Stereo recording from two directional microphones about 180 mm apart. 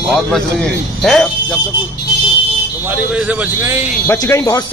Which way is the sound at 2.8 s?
5° right (ahead or behind).